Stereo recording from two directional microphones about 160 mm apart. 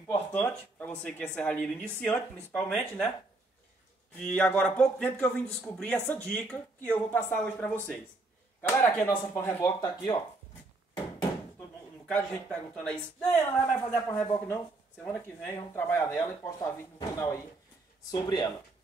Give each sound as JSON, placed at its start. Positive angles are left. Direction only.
{"t": 0.0, "sound": "a man's voice", "side_deg": 10}
{"t": 4.4, "sound": "a man's voice", "side_deg": 5}
{"t": 12.1, "sound": "a man's voice", "side_deg": 5}